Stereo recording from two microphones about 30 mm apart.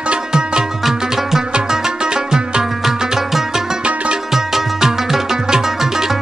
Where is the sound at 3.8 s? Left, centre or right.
Right.